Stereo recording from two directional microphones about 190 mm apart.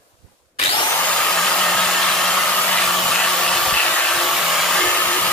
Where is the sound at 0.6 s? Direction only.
30° left (ahead or behind).